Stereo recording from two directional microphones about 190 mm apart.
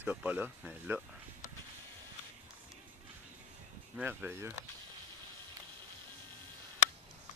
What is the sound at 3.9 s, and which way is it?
Speech, 10° right (ahead or behind).